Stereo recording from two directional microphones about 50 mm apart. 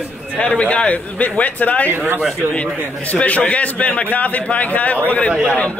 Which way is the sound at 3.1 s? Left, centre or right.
Left.